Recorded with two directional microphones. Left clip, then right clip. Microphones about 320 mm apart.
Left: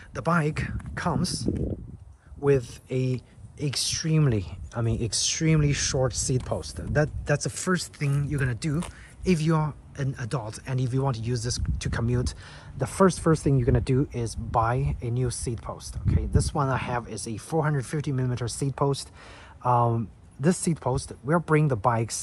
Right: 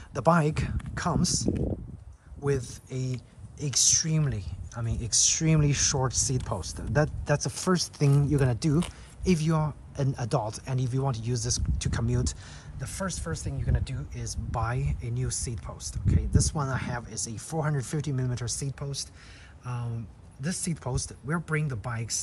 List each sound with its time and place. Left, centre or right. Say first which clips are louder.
0.1 s speech: right 2 dB; centre
12.8 s speech: left 13 dB; centre
14.1 s speech: left 9 dB; centre